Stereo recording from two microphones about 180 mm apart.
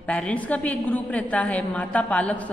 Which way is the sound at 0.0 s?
5° left (ahead or behind).